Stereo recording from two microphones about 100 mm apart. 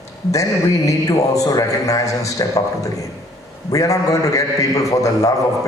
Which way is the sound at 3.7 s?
35° left (ahead or behind).